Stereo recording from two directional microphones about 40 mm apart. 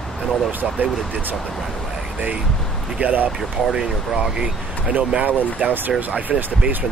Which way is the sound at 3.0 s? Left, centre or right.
Right.